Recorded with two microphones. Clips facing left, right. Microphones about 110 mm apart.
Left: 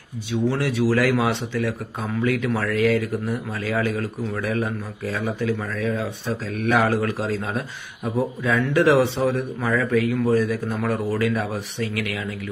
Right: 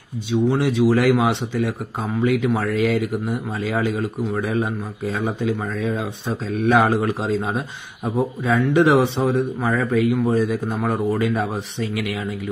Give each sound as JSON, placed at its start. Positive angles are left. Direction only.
{"t": 0.3, "sound": "a man's voice", "side_deg": -20}